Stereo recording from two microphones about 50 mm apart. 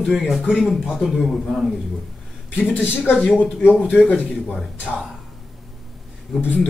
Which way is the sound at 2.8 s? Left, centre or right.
Right.